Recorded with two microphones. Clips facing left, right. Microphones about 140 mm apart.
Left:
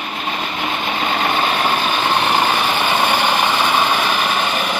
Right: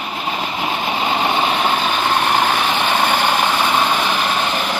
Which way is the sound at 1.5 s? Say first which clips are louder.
Even; centre (ahead or behind).